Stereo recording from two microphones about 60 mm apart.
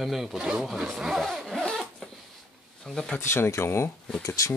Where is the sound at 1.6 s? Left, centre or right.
Centre.